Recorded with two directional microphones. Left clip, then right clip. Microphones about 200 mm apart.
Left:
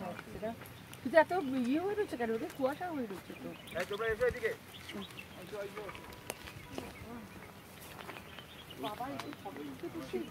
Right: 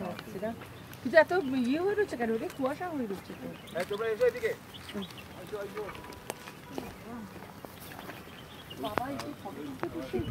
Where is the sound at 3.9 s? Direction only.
40° right (ahead or behind).